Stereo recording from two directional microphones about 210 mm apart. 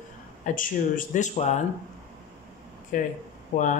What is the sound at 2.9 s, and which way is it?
Speech, 40° left (ahead or behind).